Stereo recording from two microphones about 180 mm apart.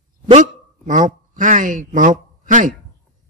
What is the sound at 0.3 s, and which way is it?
Speech, 45° right (ahead or behind).